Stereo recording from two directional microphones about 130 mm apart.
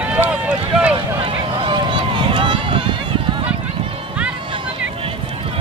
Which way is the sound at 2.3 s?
40° right (ahead or behind).